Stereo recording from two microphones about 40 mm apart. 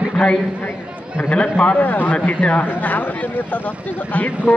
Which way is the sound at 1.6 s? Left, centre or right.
Left.